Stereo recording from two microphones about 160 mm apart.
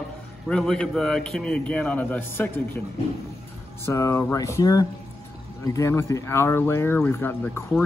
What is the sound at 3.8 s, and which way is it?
Speech, 15° left (ahead or behind).